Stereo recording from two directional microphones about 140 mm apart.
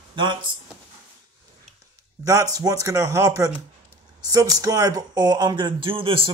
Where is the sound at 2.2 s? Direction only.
25° right (ahead or behind).